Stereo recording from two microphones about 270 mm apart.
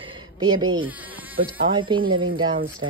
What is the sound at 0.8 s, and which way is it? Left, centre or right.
Insect, centre.